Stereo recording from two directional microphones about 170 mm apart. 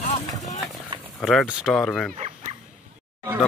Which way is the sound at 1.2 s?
Centre (ahead or behind).